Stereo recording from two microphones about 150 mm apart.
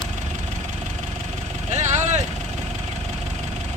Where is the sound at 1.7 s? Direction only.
50° right (ahead or behind).